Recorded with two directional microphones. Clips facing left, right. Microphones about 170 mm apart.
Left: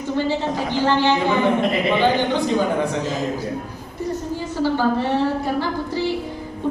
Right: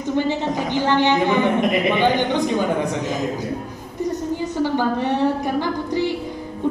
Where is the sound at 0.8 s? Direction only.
15° right (ahead or behind).